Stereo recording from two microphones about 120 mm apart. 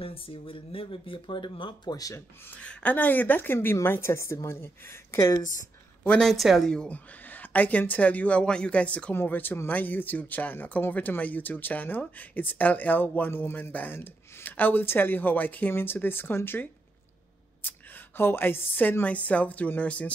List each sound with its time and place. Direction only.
0.0 s speech: 50° left (ahead or behind); by 5.4 s 25° left (ahead or behind)
6.0 s a woman's voice: 5° left (ahead or behind)